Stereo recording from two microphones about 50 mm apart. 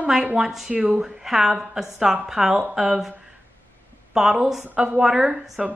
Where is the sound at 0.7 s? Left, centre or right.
Right.